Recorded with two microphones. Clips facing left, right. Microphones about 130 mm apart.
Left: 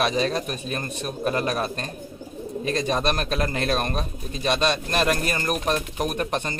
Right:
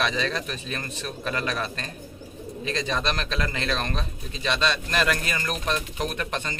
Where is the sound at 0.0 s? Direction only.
45° left (ahead or behind).